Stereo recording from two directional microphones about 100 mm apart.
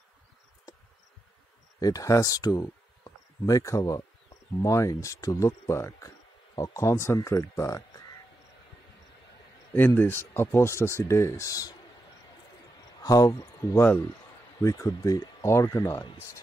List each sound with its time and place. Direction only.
1.8 s speech: 35° left (ahead or behind)
9.8 s speech: 20° left (ahead or behind)
13.0 s speech: 35° left (ahead or behind)
14.9 s speech: 45° left (ahead or behind)
15.4 s speech: 30° left (ahead or behind)